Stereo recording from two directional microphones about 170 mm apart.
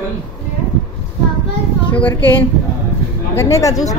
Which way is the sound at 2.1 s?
10° left (ahead or behind).